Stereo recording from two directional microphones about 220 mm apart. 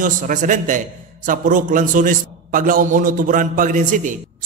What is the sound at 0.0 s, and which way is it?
A man's voice, 35° right (ahead or behind).